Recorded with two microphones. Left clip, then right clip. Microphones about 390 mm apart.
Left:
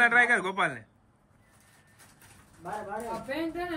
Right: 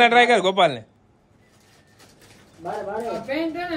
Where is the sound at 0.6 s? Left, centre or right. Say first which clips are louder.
Right 10 dB; right.